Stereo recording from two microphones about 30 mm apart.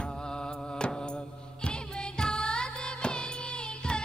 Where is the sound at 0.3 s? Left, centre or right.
Left.